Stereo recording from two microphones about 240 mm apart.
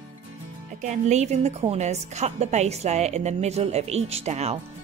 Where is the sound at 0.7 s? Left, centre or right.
Right.